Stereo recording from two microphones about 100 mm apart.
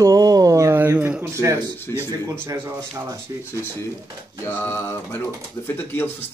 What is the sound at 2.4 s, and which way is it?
Speech, 25° right (ahead or behind).